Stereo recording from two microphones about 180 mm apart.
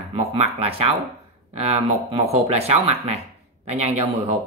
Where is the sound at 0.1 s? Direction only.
35° right (ahead or behind).